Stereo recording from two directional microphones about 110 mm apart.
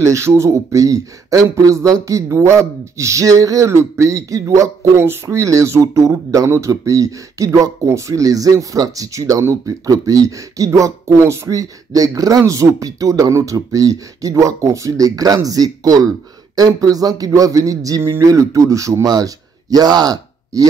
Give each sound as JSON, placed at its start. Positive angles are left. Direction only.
{"t": 0.0, "sound": "a man's voice", "side_deg": -25}